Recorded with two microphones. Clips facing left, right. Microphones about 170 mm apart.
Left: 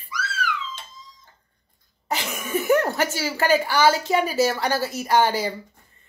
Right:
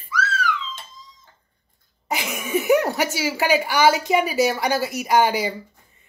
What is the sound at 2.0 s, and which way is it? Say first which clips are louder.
A woman's voice: right 1 dB; 10° right (ahead or behind).